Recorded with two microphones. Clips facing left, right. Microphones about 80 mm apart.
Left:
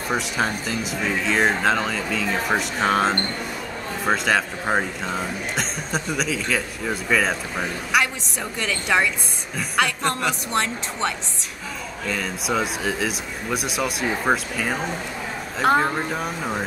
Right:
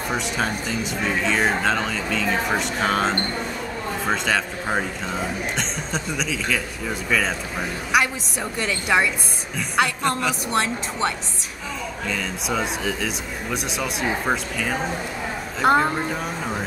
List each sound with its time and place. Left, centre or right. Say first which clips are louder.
0.1 s speech: left 2 dB; centre